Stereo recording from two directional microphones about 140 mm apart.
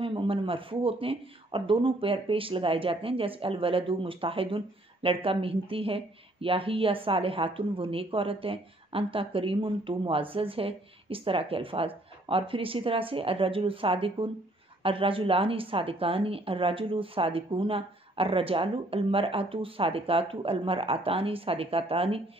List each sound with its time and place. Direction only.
0.0 s speech: 40° right (ahead or behind)